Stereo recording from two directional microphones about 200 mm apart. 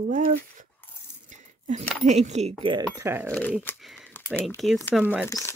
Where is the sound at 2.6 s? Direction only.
20° right (ahead or behind).